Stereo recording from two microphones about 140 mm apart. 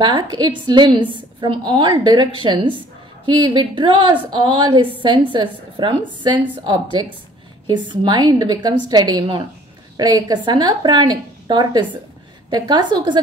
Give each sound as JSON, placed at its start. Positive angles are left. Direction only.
{"t": 0.0, "sound": "a woman's voice", "side_deg": -30}